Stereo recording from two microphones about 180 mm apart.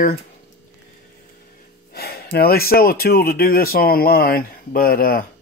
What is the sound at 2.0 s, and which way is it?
Speech, 60° left (ahead or behind).